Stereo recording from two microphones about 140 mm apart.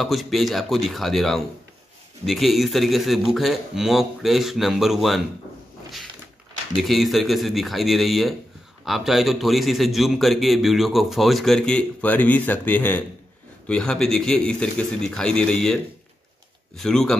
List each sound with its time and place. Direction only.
0.0 s a man's voice: centre (ahead or behind)
6.8 s a man's voice: centre (ahead or behind)